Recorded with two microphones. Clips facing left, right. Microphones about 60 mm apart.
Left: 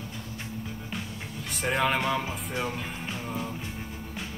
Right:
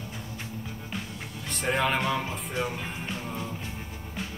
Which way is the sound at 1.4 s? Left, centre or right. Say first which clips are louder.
Even; centre.